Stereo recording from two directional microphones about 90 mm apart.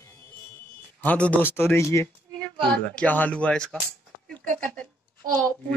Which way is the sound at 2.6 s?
15° left (ahead or behind).